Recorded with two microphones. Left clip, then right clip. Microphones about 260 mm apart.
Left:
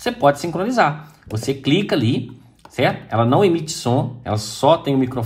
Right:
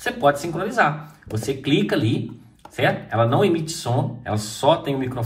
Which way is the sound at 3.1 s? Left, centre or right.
Left.